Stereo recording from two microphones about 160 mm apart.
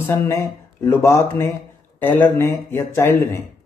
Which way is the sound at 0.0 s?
15° left (ahead or behind).